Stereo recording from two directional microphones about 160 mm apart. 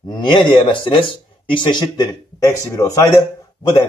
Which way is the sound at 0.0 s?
30° left (ahead or behind).